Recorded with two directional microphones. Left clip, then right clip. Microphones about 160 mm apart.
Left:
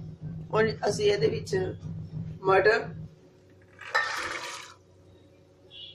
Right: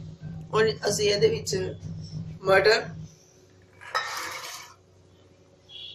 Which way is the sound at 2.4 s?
50° left (ahead or behind).